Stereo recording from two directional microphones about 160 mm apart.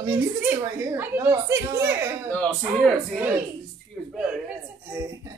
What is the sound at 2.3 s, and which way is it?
Speech, 5° left (ahead or behind).